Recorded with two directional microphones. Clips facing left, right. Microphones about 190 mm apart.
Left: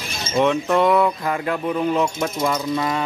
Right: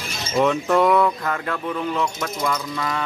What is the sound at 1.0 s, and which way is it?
Speech, 15° left (ahead or behind).